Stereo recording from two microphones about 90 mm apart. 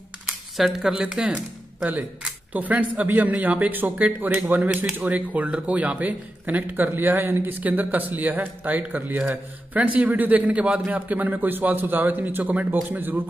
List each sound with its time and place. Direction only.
0.3 s speech: 5° right (ahead or behind); by 13.2 s 20° right (ahead or behind)